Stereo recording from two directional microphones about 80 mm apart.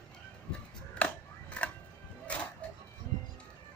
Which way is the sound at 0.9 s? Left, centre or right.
Centre.